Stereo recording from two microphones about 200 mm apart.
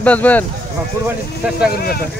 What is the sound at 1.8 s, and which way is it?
Speech, 50° left (ahead or behind).